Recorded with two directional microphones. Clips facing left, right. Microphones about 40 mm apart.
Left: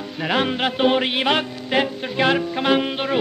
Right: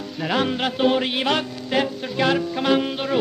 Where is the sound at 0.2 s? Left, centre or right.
Left.